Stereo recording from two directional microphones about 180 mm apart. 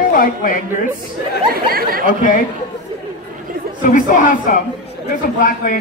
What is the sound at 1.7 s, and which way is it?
Speech, 55° right (ahead or behind).